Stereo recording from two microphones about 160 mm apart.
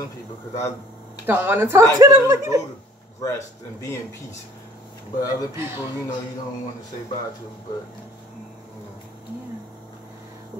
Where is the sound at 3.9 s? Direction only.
15° left (ahead or behind).